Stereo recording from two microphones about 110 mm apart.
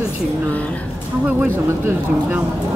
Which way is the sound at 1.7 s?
25° right (ahead or behind).